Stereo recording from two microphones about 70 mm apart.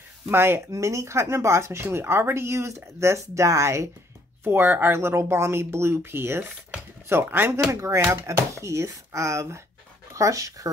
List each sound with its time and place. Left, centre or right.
0.3 s speech: right
0.7 s speech: right
4.5 s speech: right